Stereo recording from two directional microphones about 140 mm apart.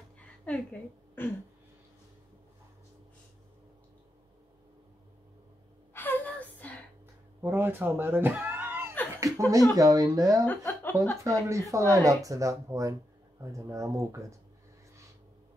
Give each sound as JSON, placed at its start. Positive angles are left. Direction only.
{"t": 1.2, "sound": "throat clearing", "side_deg": 15}
{"t": 5.9, "sound": "gasp", "side_deg": 15}
{"t": 7.4, "sound": "speech", "side_deg": -15}
{"t": 9.1, "sound": "chuckle", "side_deg": -25}
{"t": 9.8, "sound": "speech", "side_deg": -25}
{"t": 10.4, "sound": "speech", "side_deg": 15}
{"t": 11.2, "sound": "speech", "side_deg": -20}